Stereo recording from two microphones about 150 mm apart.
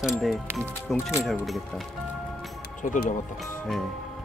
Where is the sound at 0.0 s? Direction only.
Centre (ahead or behind).